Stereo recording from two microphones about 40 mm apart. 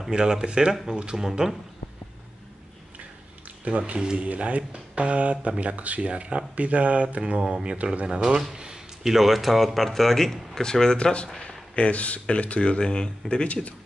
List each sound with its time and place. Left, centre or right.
0.1 s speech: centre
3.6 s speech: right
4.0 s speech: right
4.3 s speech: right
7.4 s speech: centre
7.7 s speech: right
8.2 s speech: centre
8.5 s a sound: centre
9.1 s speech: centre; by 13.7 s left